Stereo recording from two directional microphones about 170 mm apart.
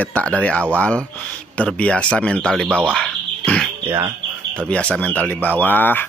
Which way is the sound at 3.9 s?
15° right (ahead or behind).